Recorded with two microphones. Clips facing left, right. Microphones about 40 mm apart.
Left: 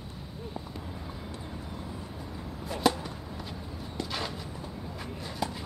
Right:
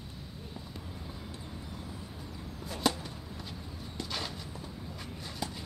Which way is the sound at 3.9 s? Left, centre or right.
Centre.